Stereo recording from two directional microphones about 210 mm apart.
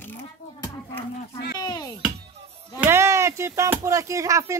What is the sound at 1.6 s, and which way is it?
Speech, 20° left (ahead or behind).